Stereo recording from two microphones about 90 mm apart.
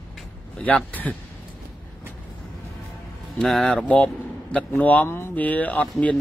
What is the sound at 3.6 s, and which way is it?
A man's voice, 15° left (ahead or behind).